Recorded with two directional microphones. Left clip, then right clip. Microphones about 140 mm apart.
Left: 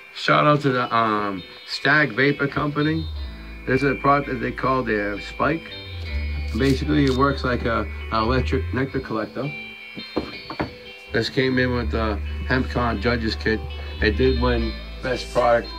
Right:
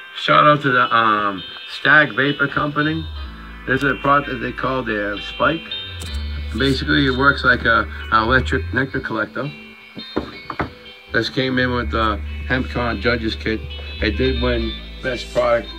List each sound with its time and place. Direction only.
0.2 s speech: 5° right (ahead or behind)
6.6 s speech: 10° right (ahead or behind)
9.0 s speech: 20° right (ahead or behind)
11.1 s speech: centre (ahead or behind)
15.1 s speech: 15° right (ahead or behind)